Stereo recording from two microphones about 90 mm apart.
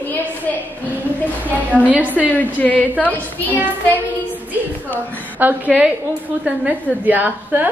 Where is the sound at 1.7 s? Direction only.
15° right (ahead or behind).